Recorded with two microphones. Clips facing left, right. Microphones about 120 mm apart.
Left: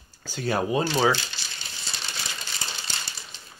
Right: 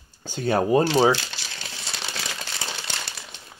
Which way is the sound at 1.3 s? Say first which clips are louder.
Right 3 dB; 90° right.